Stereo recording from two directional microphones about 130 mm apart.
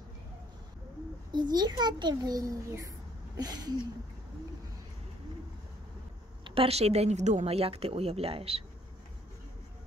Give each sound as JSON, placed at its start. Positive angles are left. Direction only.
{"t": 1.3, "sound": "a child's voice", "side_deg": -35}
{"t": 3.3, "sound": "a sound", "side_deg": -30}
{"t": 6.4, "sound": "speech", "side_deg": -45}